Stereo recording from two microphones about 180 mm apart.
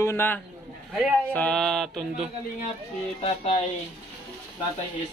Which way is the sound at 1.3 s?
5° left (ahead or behind).